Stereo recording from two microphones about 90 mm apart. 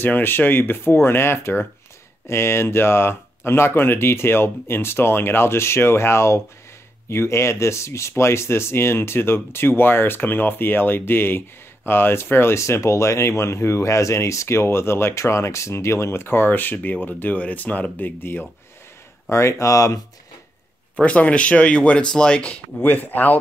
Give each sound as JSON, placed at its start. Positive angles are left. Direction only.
{"t": 0.0, "sound": "speech", "side_deg": 25}
{"t": 19.2, "sound": "speech", "side_deg": 35}
{"t": 21.0, "sound": "speech", "side_deg": 15}